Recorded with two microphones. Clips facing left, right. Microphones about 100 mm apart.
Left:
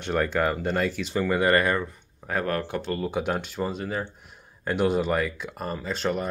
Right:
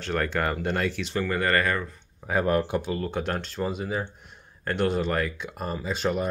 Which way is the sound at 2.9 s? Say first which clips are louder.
Left 2 dB; 5° left (ahead or behind).